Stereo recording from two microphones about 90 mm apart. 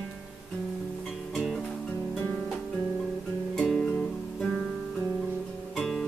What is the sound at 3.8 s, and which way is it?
Music, 10° left (ahead or behind).